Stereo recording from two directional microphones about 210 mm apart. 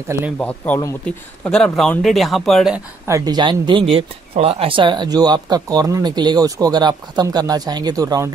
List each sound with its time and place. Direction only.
0.4 s speech: 5° left (ahead or behind)
3.1 s speech: 15° right (ahead or behind)